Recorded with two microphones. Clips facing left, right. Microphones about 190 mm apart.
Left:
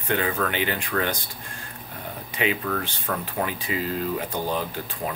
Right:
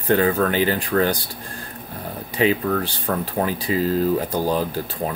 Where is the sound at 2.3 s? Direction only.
35° right (ahead or behind).